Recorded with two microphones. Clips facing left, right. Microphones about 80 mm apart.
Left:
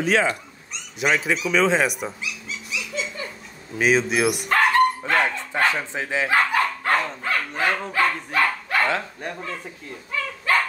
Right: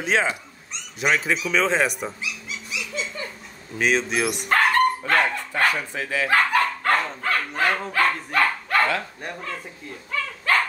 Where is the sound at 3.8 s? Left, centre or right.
Centre.